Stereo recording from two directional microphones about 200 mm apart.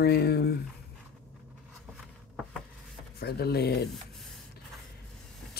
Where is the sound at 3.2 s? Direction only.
50° left (ahead or behind).